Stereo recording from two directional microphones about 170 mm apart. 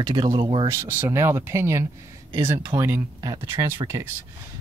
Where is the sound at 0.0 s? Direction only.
25° right (ahead or behind).